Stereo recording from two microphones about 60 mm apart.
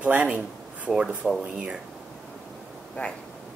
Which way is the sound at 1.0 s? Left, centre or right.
Centre.